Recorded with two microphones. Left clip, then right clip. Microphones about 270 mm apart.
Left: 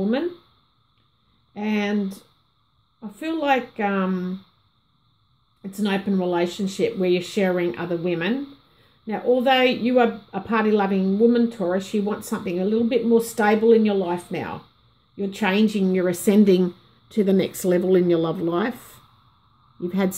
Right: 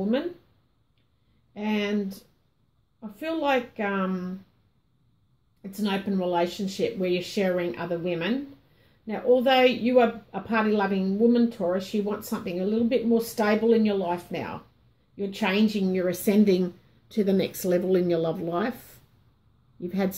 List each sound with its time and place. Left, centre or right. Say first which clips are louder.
1.5 s a woman's voice: left 3 dB; left
3.3 s a woman's voice: left 4 dB; left
5.6 s a woman's voice: left 4 dB; left
19.8 s a woman's voice: left 4 dB; left